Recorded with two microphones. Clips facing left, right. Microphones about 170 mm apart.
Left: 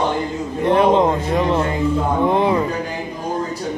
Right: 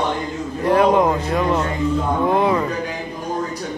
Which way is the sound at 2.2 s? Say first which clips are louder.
Left 1 dB; 20° left (ahead or behind).